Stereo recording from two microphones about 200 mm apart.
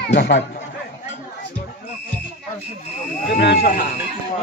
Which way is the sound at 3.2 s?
50° left (ahead or behind).